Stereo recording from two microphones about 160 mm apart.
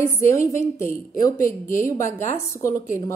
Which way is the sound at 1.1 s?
20° left (ahead or behind).